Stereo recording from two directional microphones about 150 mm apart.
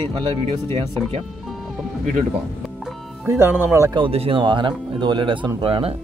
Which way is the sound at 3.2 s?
15° right (ahead or behind).